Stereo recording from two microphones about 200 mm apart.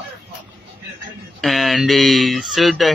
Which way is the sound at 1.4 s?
Centre (ahead or behind).